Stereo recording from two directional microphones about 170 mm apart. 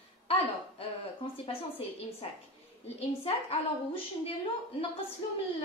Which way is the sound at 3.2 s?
35° left (ahead or behind).